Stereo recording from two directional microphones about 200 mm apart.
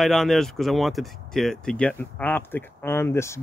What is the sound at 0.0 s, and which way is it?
Speech, centre (ahead or behind).